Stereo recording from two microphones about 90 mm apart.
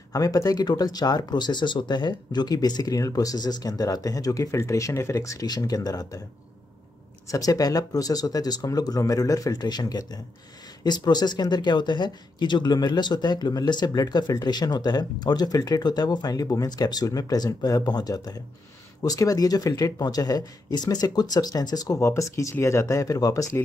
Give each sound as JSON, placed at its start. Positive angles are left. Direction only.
{"t": 0.1, "sound": "speech", "side_deg": 40}
{"t": 7.2, "sound": "speech", "side_deg": 40}